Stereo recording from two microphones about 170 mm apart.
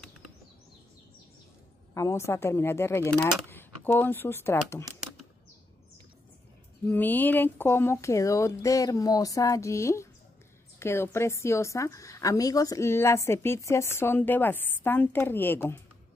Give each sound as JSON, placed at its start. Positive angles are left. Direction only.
{"t": 2.0, "sound": "a woman's voice", "side_deg": 15}
{"t": 6.9, "sound": "a woman's voice", "side_deg": 10}